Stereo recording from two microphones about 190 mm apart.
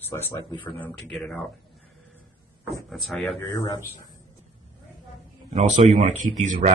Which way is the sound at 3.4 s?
20° left (ahead or behind).